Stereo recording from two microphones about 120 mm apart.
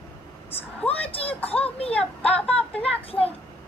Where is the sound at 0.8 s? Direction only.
55° left (ahead or behind).